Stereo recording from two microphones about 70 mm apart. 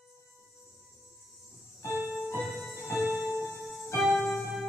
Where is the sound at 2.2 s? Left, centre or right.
Right.